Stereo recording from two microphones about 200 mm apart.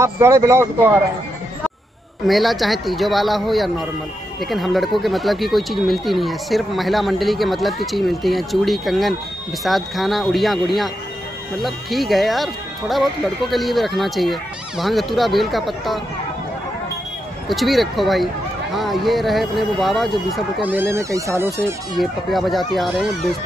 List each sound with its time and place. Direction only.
0.0 s speech: 15° right (ahead or behind)
2.2 s speech: centre (ahead or behind)
17.5 s speech: centre (ahead or behind)
22.3 s speech: centre (ahead or behind)